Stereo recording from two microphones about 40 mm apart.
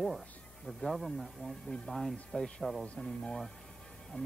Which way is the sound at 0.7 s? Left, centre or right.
Centre.